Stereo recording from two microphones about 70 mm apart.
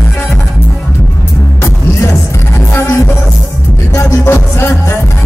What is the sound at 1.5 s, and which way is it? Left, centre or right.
Music, left.